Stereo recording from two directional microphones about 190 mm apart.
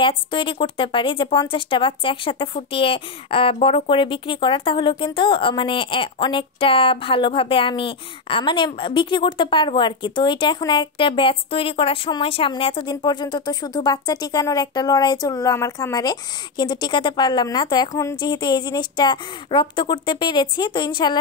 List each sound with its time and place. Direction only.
0.0 s speech: 25° left (ahead or behind)